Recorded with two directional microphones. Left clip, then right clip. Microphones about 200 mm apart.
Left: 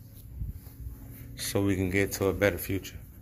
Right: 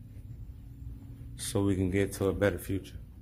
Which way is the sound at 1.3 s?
15° right (ahead or behind).